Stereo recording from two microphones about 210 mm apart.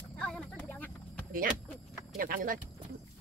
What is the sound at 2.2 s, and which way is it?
Speech, 40° right (ahead or behind).